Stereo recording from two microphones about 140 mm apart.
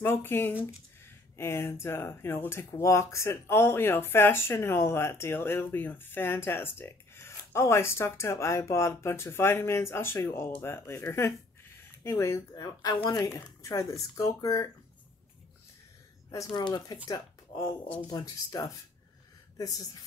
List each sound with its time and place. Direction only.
0.0 s speech: 15° left (ahead or behind)
16.3 s a woman's voice: 25° left (ahead or behind)